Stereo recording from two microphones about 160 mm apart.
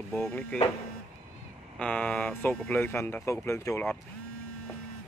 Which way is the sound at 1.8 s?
5° left (ahead or behind).